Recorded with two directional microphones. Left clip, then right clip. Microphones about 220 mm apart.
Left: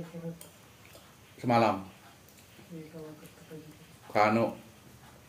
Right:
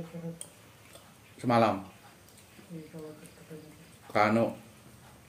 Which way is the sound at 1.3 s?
5° right (ahead or behind).